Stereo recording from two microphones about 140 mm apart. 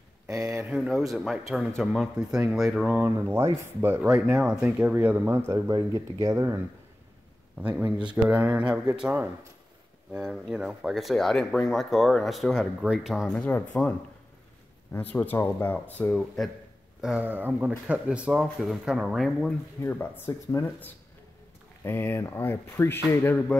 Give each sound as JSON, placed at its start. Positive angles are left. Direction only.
{"t": 0.7, "sound": "speech", "side_deg": 0}
{"t": 3.0, "sound": "speech", "side_deg": -15}
{"t": 7.5, "sound": "speech", "side_deg": -10}
{"t": 13.4, "sound": "speech", "side_deg": 10}
{"t": 16.4, "sound": "speech", "side_deg": 0}
{"t": 19.8, "sound": "speech", "side_deg": 15}